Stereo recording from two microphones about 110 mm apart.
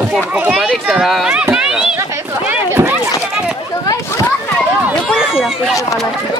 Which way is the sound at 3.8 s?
30° left (ahead or behind).